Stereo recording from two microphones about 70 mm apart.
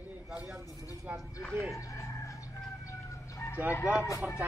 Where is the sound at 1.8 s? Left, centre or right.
Left.